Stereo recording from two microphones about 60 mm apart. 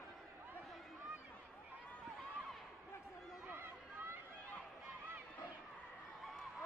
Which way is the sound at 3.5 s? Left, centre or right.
Right.